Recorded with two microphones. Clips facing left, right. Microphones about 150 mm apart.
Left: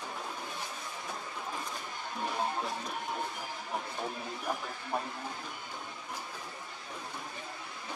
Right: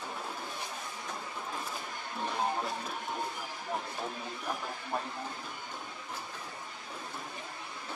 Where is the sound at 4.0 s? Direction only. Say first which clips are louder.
Left 1 dB; 5° left (ahead or behind).